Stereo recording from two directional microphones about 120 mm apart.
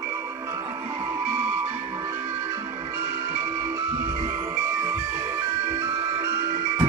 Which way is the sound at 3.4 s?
25° right (ahead or behind).